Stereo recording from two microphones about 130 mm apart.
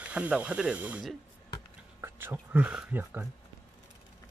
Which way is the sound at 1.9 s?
15° right (ahead or behind).